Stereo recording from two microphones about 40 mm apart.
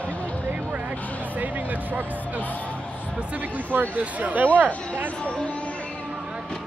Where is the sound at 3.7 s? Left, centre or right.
Right.